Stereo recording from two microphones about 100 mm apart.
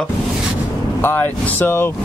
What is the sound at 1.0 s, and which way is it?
Speech, 20° left (ahead or behind).